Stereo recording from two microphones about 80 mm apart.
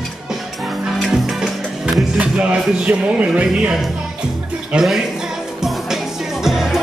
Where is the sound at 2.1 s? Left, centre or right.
Centre.